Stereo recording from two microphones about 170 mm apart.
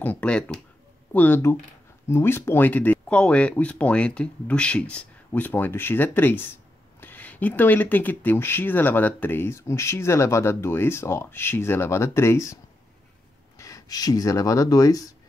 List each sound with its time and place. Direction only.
0.0 s speech: 10° left (ahead or behind)
13.6 s speech: 20° left (ahead or behind)